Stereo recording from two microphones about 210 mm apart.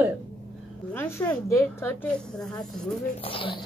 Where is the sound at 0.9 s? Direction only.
10° left (ahead or behind).